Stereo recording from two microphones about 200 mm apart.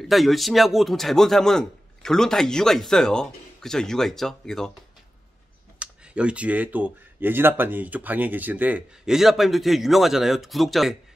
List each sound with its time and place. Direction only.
0.1 s a man's voice: centre (ahead or behind)
5.8 s speech: 5° right (ahead or behind)